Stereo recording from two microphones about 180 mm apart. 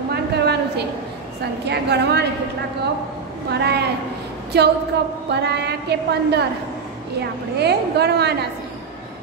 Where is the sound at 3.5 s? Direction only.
65° right (ahead or behind).